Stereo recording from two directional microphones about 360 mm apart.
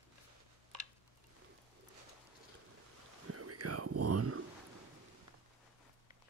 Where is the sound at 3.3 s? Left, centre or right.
Right.